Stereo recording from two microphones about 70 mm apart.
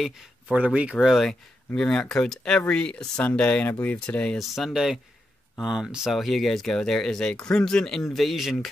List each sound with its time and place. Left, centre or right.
0.0 s speech: centre
0.9 s speech: centre
1.8 s speech: centre
4.4 s speech: centre